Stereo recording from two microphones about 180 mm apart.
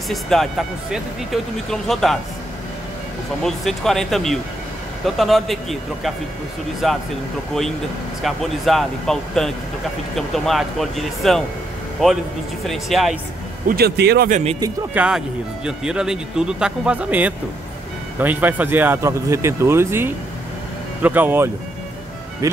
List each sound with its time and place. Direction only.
0.1 s speech: centre (ahead or behind)
3.4 s speech: centre (ahead or behind)
8.2 s speech: centre (ahead or behind)
13.7 s speech: 60° right (ahead or behind)
14.3 s speech: 35° right (ahead or behind)
15.0 s speech: 5° right (ahead or behind)